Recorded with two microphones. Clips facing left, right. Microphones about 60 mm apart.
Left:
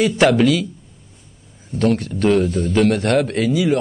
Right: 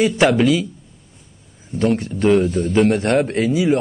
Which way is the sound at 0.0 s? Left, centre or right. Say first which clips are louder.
Left 1 dB; centre.